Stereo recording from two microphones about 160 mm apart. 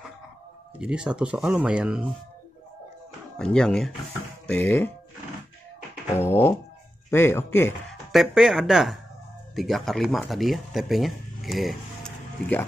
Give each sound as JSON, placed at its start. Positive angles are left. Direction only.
{"t": 0.7, "sound": "speech", "side_deg": -5}
{"t": 3.3, "sound": "speech", "side_deg": 5}
{"t": 6.1, "sound": "speech", "side_deg": 15}
{"t": 8.1, "sound": "speech", "side_deg": 0}